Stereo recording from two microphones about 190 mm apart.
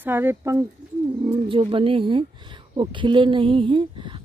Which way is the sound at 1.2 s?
25° right (ahead or behind).